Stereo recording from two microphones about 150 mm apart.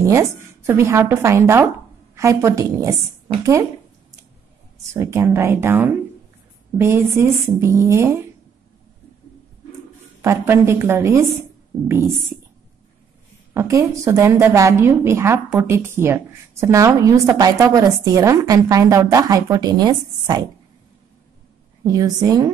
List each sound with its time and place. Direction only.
0.0 s a woman's voice: 20° right (ahead or behind)
4.9 s a woman's voice: 15° right (ahead or behind)
10.2 s a woman's voice: 15° right (ahead or behind)
13.5 s a woman's voice: 20° right (ahead or behind)
21.8 s a woman's voice: 25° right (ahead or behind)